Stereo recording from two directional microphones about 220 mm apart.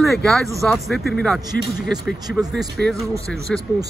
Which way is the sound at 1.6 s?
45° left (ahead or behind).